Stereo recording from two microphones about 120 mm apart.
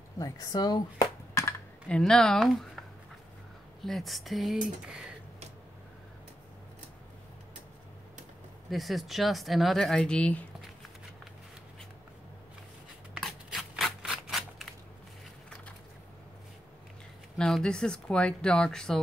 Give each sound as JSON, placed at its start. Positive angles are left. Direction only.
{"t": 0.2, "sound": "speech", "side_deg": 30}
{"t": 1.9, "sound": "speech", "side_deg": 5}
{"t": 3.8, "sound": "speech", "side_deg": 0}
{"t": 8.6, "sound": "speech", "side_deg": 0}
{"t": 13.1, "sound": "typewriter", "side_deg": 0}
{"t": 17.4, "sound": "speech", "side_deg": 5}